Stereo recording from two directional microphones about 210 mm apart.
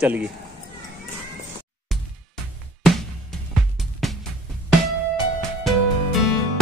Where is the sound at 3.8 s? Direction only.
Centre (ahead or behind).